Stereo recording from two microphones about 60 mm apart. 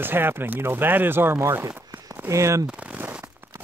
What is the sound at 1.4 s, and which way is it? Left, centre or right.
Speech, right.